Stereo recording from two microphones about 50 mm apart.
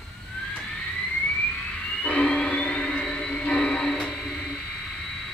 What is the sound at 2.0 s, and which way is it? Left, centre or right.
Music, left.